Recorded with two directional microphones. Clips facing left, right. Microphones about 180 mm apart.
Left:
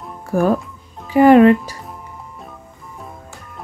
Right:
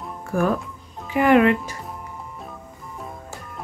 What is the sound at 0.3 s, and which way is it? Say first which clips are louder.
Speech: left 5 dB; 35° left (ahead or behind).